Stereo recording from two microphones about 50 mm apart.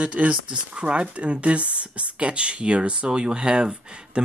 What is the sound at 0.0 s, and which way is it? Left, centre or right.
Speech, right.